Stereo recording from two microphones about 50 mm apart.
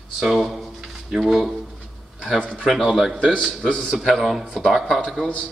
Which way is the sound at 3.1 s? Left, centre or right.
Centre.